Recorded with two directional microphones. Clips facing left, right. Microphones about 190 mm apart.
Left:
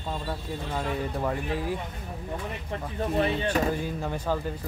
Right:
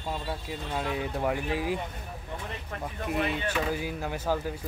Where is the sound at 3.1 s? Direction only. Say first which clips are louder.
Left 4 dB; 35° left (ahead or behind).